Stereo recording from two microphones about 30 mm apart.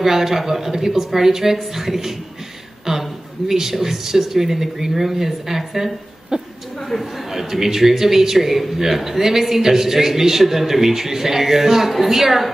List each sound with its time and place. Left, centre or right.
0.0 s a man's voice: centre
6.3 s a man's voice: centre
6.9 s speech: centre
7.2 s a man's voice: centre